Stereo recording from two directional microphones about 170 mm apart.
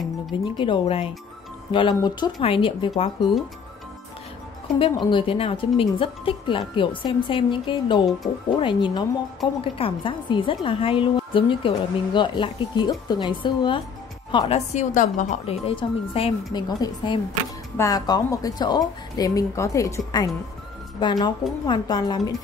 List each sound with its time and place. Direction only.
0.3 s a woman's voice: 30° left (ahead or behind)
4.7 s a woman's voice: 30° left (ahead or behind)
14.7 s a woman's voice: 45° left (ahead or behind); by 22.3 s 25° left (ahead or behind)